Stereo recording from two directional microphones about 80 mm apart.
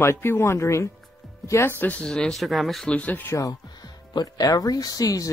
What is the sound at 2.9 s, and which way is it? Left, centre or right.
Speech, centre.